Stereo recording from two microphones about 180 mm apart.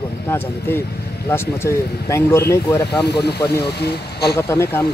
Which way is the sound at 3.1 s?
65° left (ahead or behind).